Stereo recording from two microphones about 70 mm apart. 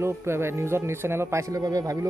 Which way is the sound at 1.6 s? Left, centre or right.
Right.